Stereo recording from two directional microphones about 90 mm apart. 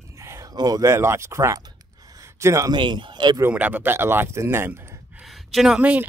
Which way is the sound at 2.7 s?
60° right (ahead or behind).